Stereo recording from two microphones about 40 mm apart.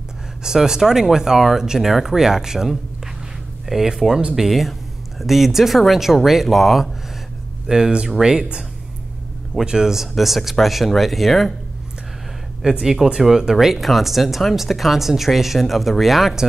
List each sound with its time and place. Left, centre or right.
0.4 s speech: centre
7.6 s speech: centre
9.7 s speech: centre
10.1 s speech: centre
12.8 s speech: centre